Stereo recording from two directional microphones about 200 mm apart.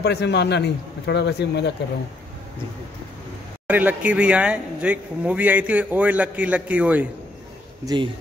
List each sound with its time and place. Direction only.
0.0 s a man's voice: 55° left (ahead or behind)
3.6 s speech: 10° right (ahead or behind)
7.8 s speech: 20° right (ahead or behind)